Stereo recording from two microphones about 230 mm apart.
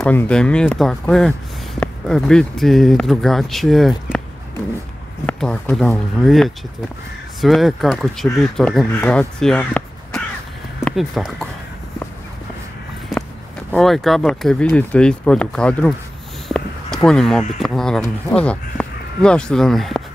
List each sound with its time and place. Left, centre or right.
0.0 s speech: centre
5.2 s speech: centre
13.1 s a sound: centre
13.7 s speech: centre